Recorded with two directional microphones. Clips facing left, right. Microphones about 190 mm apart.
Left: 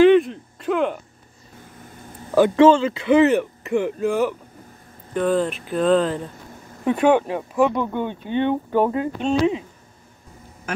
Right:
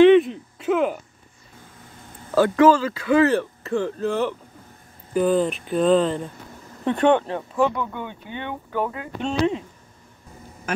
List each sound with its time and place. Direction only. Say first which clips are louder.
0.0 s a sound: right 1 dB; centre (ahead or behind)
2.3 s speech: left 2 dB; 20° left (ahead or behind)
5.1 s speech: right 1 dB; centre (ahead or behind)
7.7 s speech: left 6 dB; 25° left (ahead or behind)